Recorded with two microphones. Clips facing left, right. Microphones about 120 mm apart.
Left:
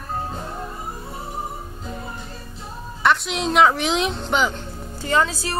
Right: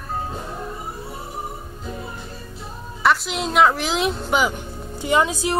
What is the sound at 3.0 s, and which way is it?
Speech, centre (ahead or behind).